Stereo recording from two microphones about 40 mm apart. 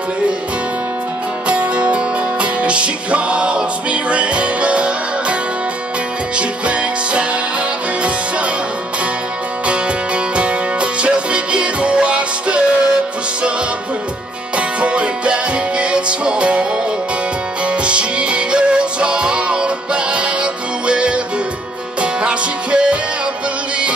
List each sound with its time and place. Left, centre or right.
1.5 s music: right
6.3 s music: right
9.7 s music: right
14.8 s music: right
17.6 s music: right